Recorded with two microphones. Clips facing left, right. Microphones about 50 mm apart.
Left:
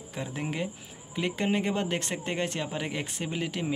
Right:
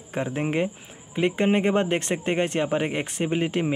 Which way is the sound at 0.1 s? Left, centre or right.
Right.